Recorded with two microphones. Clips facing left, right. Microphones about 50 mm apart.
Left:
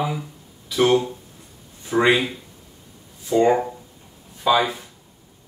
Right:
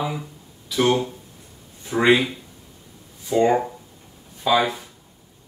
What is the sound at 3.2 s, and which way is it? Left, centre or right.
Speech, centre.